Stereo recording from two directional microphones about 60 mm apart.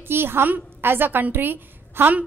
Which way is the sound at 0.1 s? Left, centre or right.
Right.